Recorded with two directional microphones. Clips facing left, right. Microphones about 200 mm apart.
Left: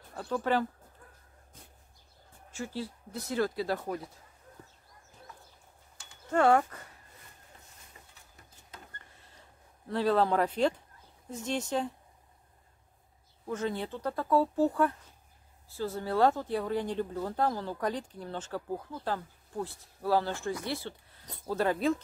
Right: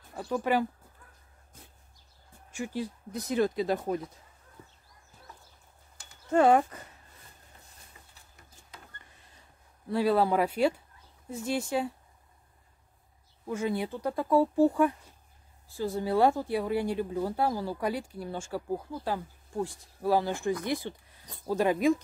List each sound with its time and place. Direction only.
0.1 s speech: 10° right (ahead or behind)
2.5 s speech: 15° right (ahead or behind)
6.3 s speech: 20° right (ahead or behind)
9.8 s speech: 10° right (ahead or behind)
13.5 s speech: 10° right (ahead or behind)